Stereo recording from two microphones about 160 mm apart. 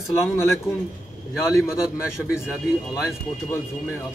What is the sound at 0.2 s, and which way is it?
Speech, 15° left (ahead or behind).